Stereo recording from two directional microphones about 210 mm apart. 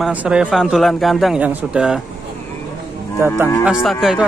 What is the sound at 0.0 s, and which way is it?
A man's voice, 5° right (ahead or behind).